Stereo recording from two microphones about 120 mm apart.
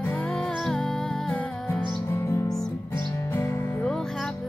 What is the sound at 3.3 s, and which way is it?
Music, 20° left (ahead or behind).